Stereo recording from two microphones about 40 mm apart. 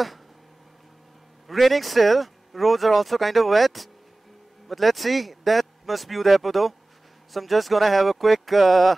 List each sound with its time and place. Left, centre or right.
1.5 s speech: centre